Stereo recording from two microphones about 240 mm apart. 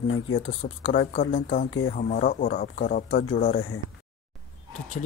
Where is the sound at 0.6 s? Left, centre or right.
Left.